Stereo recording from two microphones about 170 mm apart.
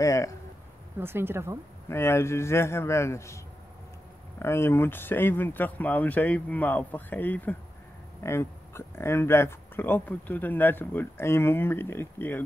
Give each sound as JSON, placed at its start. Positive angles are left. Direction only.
{"t": 0.0, "sound": "speech", "side_deg": 20}
{"t": 0.9, "sound": "speech", "side_deg": -15}
{"t": 1.9, "sound": "speech", "side_deg": 15}
{"t": 4.4, "sound": "speech", "side_deg": 15}